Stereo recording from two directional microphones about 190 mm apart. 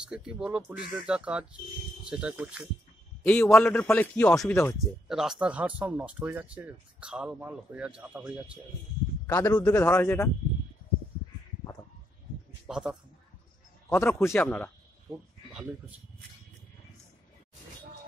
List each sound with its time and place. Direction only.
0.0 s speech: 5° right (ahead or behind)
3.3 s a man's voice: 5° left (ahead or behind)
4.7 s speech: centre (ahead or behind)
9.3 s a man's voice: 15° left (ahead or behind)
12.6 s a man's voice: 5° right (ahead or behind)
13.8 s a man's voice: 15° left (ahead or behind)